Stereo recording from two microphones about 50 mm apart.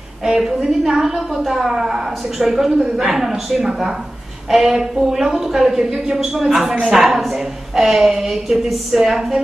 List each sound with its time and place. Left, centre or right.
0.4 s a woman's voice: centre
6.7 s a woman's voice: centre
7.0 s a woman's voice: centre